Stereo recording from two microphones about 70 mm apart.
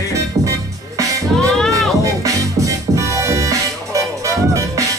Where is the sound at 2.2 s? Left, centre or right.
Right.